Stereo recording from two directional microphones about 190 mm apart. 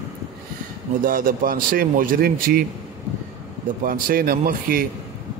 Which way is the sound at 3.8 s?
50° right (ahead or behind).